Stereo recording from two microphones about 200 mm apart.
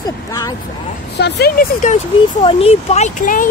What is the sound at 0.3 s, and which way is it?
Speech, 15° left (ahead or behind).